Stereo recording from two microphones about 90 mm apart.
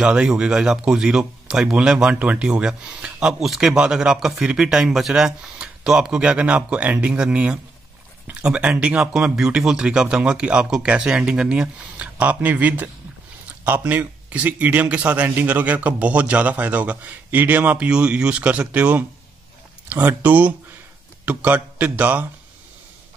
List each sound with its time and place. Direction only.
0.0 s speech: 10° right (ahead or behind)